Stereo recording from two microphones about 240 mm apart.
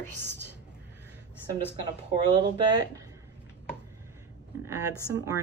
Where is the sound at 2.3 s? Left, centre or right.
Centre.